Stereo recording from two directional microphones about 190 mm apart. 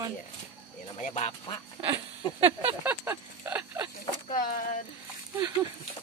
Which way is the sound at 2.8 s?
10° right (ahead or behind).